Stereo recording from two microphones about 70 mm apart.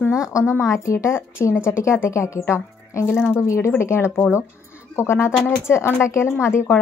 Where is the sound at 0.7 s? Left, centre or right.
Left.